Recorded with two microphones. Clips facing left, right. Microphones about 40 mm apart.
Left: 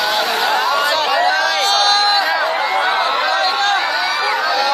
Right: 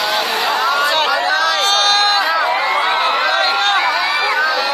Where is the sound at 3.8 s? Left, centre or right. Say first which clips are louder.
Right 2 dB; centre.